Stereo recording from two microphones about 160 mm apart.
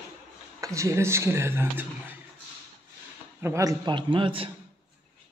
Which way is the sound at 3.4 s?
20° right (ahead or behind).